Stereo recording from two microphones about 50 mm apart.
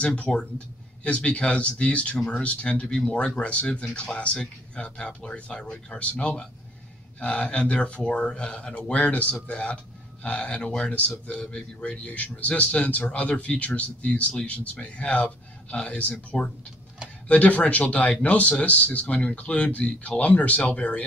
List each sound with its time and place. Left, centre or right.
0.0 s speech: left